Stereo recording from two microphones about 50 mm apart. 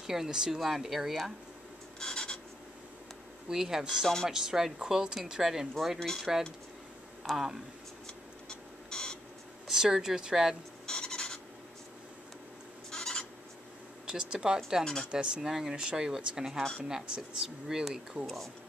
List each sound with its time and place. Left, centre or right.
0.0 s speech: centre
2.0 s a sound: centre
3.4 s speech: centre
5.9 s speech: centre
7.2 s speech: centre
8.5 s a sound: centre
9.7 s speech: centre
10.9 s a sound: centre
12.9 s a sound: centre
14.0 s speech: centre
15.4 s speech: centre
18.2 s speech: centre